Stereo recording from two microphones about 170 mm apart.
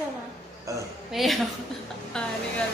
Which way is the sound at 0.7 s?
20° right (ahead or behind).